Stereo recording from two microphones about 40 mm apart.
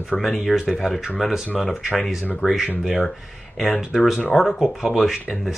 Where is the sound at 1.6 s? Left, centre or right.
Centre.